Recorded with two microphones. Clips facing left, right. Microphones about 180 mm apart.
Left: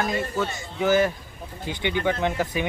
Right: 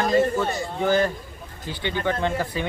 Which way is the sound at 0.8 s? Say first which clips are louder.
Left 1 dB; 5° left (ahead or behind).